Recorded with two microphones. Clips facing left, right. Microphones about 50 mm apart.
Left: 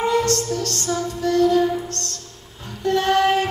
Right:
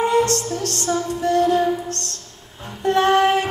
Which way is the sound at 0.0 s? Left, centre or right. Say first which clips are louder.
Right 2 dB; right.